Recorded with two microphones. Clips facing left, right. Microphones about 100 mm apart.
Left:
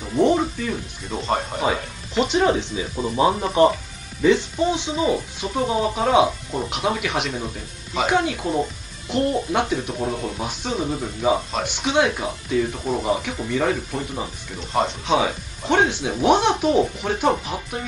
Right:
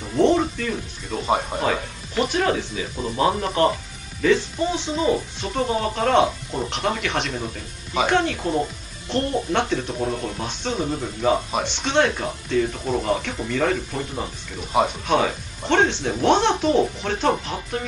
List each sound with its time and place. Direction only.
0.0 s music: 5° left (ahead or behind)
1.2 s speech: 10° right (ahead or behind)
2.1 s speech: 20° left (ahead or behind)
14.7 s speech: 10° right (ahead or behind)
15.0 s speech: 5° left (ahead or behind)